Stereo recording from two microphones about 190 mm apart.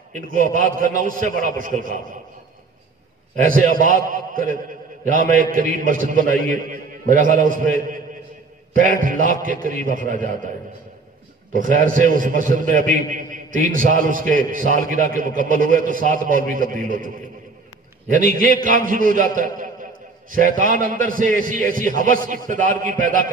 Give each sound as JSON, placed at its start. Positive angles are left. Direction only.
{"t": 0.1, "sound": "a man's voice", "side_deg": -45}
{"t": 3.4, "sound": "a man's voice", "side_deg": -45}
{"t": 11.5, "sound": "a man's voice", "side_deg": -45}